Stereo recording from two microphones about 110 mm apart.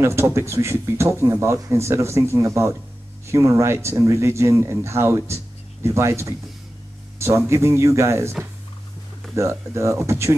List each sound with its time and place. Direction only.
0.0 s speech: 25° right (ahead or behind)